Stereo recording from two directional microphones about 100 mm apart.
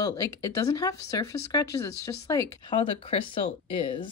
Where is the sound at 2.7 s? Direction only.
60° left (ahead or behind).